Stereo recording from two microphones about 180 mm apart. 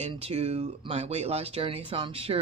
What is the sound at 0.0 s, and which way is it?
Speech, 35° right (ahead or behind).